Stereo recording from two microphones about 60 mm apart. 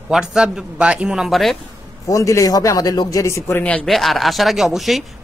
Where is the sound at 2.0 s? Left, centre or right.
Left.